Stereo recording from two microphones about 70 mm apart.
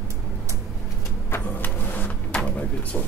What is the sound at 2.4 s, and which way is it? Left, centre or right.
Drawer open or close, centre.